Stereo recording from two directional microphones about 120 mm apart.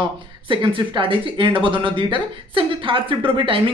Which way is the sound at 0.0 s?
45° right (ahead or behind).